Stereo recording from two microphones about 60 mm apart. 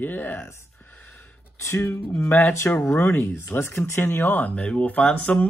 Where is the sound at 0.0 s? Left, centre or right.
Left.